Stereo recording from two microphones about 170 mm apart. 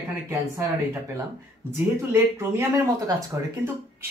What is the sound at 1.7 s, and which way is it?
Speech, 15° right (ahead or behind).